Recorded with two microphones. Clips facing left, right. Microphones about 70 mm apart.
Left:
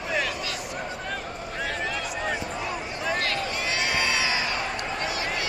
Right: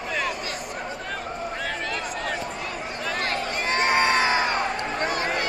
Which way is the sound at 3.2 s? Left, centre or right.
Right.